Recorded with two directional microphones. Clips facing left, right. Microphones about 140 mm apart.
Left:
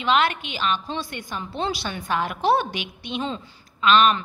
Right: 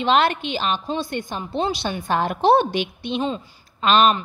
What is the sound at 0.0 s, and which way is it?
A woman's voice, 35° right (ahead or behind).